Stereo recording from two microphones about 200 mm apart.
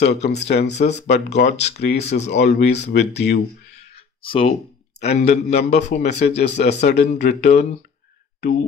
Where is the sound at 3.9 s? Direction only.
25° left (ahead or behind).